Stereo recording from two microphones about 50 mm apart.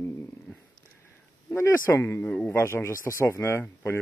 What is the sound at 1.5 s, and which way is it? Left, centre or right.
Speech, left.